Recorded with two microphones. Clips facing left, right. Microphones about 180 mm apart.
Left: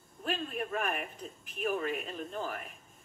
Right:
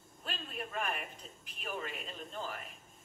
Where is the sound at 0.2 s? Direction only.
50° left (ahead or behind).